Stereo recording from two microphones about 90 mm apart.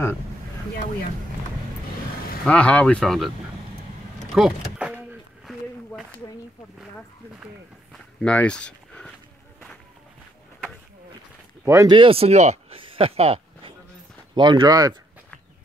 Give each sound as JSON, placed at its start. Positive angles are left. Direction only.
{"t": 2.4, "sound": "speech", "side_deg": 15}
{"t": 4.4, "sound": "a sound", "side_deg": -5}
{"t": 8.2, "sound": "a sound", "side_deg": 10}
{"t": 11.6, "sound": "speech", "side_deg": -30}
{"t": 11.9, "sound": "speech", "side_deg": -80}
{"t": 14.3, "sound": "speech", "side_deg": -60}